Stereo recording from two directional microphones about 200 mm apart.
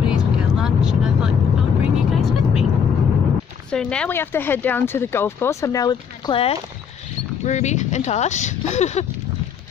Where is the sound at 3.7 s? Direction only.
5° left (ahead or behind); by 9.1 s 35° left (ahead or behind).